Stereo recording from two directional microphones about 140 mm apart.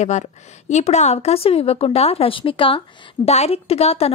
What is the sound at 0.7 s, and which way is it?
A woman's voice, 55° left (ahead or behind).